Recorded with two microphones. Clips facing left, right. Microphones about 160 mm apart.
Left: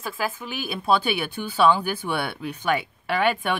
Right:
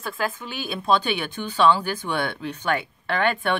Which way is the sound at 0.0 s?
5° left (ahead or behind).